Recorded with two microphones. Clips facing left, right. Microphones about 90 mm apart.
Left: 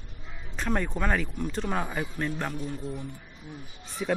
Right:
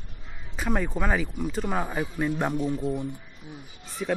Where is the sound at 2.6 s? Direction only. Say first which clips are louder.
Right 7 dB; 35° right (ahead or behind).